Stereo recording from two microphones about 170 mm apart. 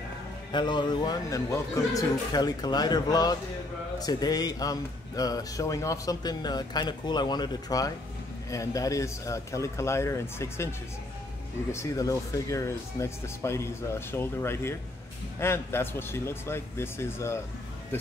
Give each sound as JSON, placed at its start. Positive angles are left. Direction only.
{"t": 0.5, "sound": "a man's voice", "side_deg": 25}
{"t": 11.7, "sound": "speech", "side_deg": 20}